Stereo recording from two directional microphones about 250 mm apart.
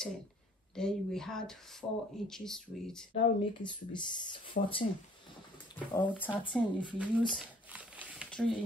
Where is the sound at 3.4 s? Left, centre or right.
Centre.